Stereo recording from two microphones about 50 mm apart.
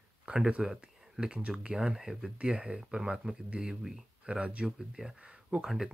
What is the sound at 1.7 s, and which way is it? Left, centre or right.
Speech, centre.